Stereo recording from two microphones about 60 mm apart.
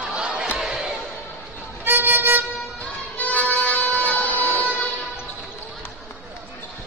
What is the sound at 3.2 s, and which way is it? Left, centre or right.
Music, left.